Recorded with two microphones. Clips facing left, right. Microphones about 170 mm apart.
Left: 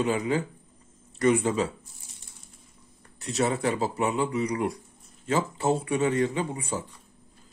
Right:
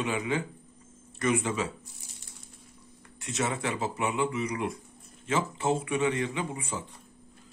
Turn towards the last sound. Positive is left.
turn(degrees=35)  # may be behind; listen again after turning